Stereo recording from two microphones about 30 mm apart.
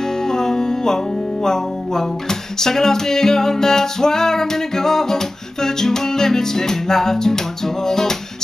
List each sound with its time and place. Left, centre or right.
0.2 s music: centre